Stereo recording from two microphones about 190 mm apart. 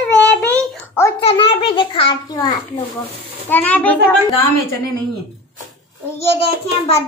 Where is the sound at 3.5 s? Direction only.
10° left (ahead or behind).